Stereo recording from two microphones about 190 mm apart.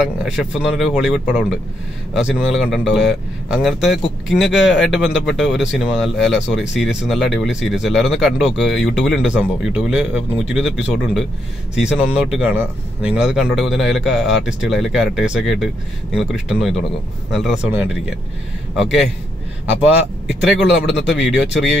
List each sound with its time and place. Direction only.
0.0 s speech: 5° right (ahead or behind)
8.7 s speech: 75° left (ahead or behind)
9.0 s speech: 5° right (ahead or behind)
20.9 s speech: 65° left (ahead or behind)
21.4 s speech: centre (ahead or behind)